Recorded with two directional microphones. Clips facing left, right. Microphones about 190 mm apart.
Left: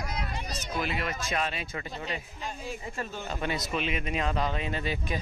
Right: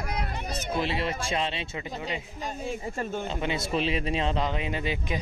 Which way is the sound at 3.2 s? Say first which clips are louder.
Right 2 dB; 20° right (ahead or behind).